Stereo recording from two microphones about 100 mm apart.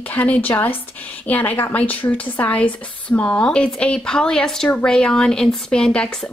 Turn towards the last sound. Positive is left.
turn(degrees=10)  # may be behind; listen again after turning